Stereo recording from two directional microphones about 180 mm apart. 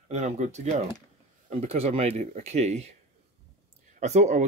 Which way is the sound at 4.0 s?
40° right (ahead or behind).